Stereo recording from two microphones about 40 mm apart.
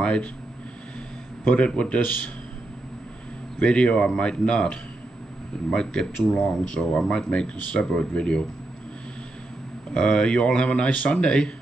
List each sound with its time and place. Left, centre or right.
1.5 s speech: left
2.0 s a man's voice: left
3.6 s speech: left
6.7 s a man's voice: left
9.9 s speech: left